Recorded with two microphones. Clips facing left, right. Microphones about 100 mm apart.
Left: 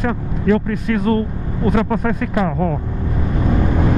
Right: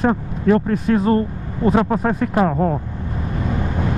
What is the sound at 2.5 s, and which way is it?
Speech, 25° right (ahead or behind).